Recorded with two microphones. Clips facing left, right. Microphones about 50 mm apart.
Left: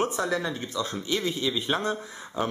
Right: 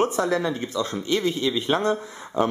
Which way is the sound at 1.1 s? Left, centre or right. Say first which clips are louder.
Right 5 dB; centre.